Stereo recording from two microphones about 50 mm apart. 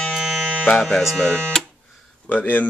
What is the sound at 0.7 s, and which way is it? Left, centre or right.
Speech, centre.